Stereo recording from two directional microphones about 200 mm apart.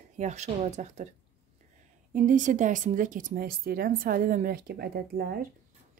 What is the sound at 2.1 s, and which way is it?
Speech, 40° right (ahead or behind).